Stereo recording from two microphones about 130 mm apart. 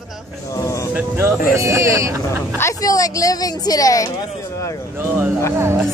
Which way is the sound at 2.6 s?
25° left (ahead or behind).